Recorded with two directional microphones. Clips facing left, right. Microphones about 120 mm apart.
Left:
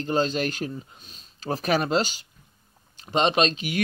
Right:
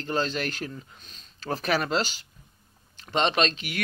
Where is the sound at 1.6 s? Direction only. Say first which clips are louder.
Left 3 dB; 20° left (ahead or behind).